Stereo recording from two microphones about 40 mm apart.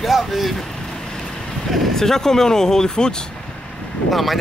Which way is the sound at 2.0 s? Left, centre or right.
Centre.